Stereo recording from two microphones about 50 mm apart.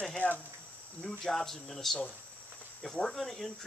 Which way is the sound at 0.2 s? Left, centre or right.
Left.